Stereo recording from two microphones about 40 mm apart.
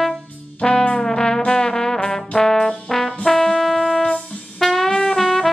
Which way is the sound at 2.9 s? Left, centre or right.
Centre.